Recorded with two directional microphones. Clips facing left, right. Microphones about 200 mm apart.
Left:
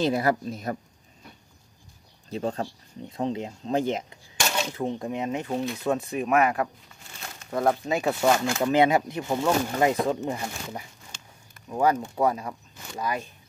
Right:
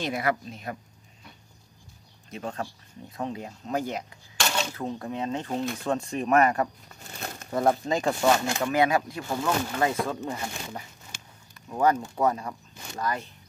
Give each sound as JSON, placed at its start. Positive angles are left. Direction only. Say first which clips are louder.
{"t": 0.0, "sound": "a woman's voice", "louder": "left 5 dB", "side_deg": 35}
{"t": 2.3, "sound": "speech", "louder": "left 5 dB", "side_deg": 30}
{"t": 7.0, "sound": "crumpling", "louder": "right 5 dB", "side_deg": -40}
{"t": 7.5, "sound": "speech", "louder": "even", "side_deg": 0}
{"t": 8.7, "sound": "speech", "louder": "left 3 dB", "side_deg": 20}
{"t": 11.1, "sound": "a sound", "louder": "right 1 dB", "side_deg": -10}
{"t": 11.7, "sound": "speech", "louder": "even", "side_deg": 10}